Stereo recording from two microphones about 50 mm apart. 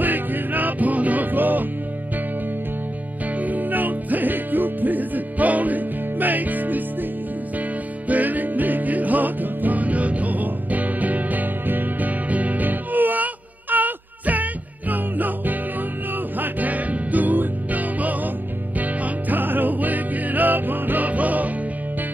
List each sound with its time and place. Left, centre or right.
0.0 s music: right
3.3 s music: right
8.1 s music: right